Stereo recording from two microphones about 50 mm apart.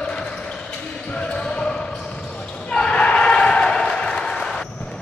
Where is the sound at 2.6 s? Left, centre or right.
Left.